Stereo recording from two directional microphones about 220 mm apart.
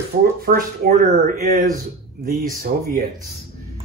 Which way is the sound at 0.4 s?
40° right (ahead or behind).